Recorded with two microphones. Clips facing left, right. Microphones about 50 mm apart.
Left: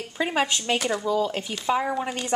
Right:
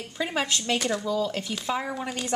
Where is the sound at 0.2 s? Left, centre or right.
Centre.